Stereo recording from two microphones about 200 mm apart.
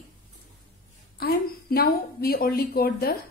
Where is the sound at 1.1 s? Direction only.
50° left (ahead or behind).